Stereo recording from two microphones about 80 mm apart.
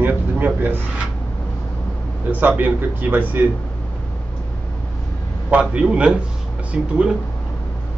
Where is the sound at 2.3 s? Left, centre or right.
Right.